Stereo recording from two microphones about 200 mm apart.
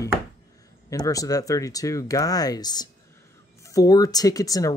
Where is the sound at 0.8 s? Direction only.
15° left (ahead or behind).